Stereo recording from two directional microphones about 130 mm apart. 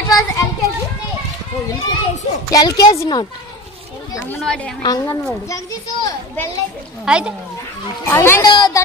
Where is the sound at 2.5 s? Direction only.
30° left (ahead or behind).